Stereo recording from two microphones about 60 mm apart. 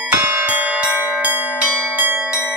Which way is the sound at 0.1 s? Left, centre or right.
Right.